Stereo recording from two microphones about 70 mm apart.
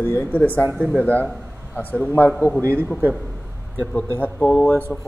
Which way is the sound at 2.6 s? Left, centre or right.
Right.